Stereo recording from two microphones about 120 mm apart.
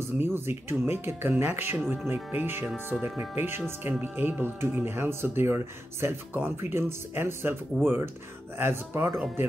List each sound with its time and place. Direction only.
0.0 s speech: 20° right (ahead or behind)